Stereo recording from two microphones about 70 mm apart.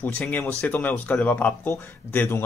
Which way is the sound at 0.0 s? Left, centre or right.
Left.